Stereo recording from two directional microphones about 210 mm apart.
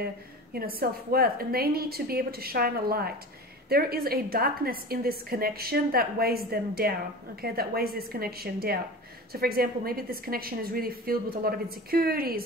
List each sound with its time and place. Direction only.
0.0 s a woman's voice: 45° right (ahead or behind)